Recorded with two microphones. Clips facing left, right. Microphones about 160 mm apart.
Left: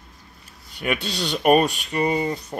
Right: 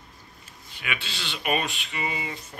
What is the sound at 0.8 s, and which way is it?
Speech, 45° left (ahead or behind).